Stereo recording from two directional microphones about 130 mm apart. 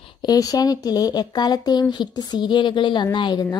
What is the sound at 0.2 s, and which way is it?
A woman's voice, 30° left (ahead or behind).